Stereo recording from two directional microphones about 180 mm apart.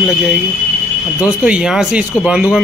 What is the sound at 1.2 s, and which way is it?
Speech, 5° right (ahead or behind).